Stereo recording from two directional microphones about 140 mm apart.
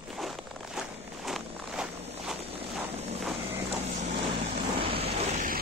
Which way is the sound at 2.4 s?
45° right (ahead or behind).